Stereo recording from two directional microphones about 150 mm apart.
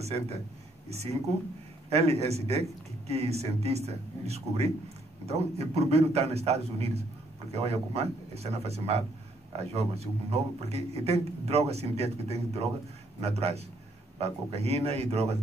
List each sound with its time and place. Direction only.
0.0 s speech: 45° right (ahead or behind)
1.9 s speech: 45° right (ahead or behind)